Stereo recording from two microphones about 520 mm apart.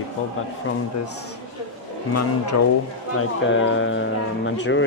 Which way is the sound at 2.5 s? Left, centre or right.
Left.